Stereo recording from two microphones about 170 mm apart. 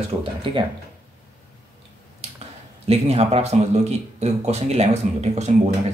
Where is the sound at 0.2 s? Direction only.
30° right (ahead or behind).